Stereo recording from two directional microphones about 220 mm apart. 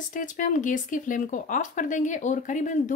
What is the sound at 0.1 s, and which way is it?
Speech, 35° left (ahead or behind).